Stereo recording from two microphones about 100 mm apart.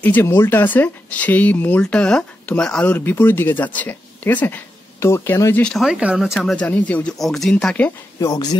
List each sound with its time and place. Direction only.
0.0 s speech: 20° left (ahead or behind)
5.6 s speech: 5° left (ahead or behind)
5.9 s speech: 10° right (ahead or behind)
6.5 s speech: 15° left (ahead or behind)
7.2 s speech: centre (ahead or behind)
7.5 s speech: 15° left (ahead or behind)
8.2 s speech: 35° left (ahead or behind)